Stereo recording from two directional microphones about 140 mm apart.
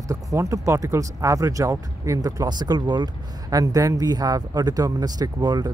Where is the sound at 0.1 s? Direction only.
25° right (ahead or behind).